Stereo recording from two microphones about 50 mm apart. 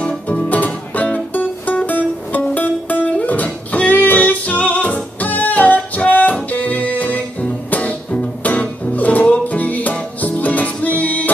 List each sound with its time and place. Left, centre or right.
0.3 s music: left